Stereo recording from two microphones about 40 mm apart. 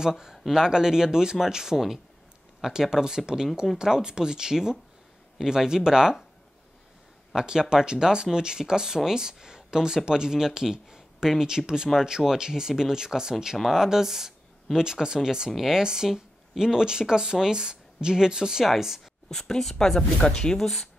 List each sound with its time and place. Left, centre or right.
0.0 s speech: centre
7.3 s speech: centre
19.3 s speech: centre
20.2 s speech: left
20.5 s speech: centre